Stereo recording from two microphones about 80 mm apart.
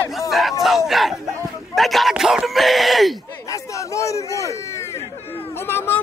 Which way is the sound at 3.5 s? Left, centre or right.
Left.